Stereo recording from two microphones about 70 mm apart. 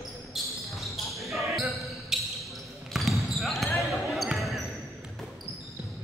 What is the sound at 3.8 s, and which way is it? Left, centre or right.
Basketball bounce, centre.